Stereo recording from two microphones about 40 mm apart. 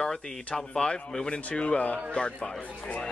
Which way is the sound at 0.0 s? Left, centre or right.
Centre.